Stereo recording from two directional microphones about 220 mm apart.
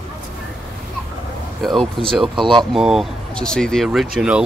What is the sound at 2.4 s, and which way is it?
Speech, 20° right (ahead or behind).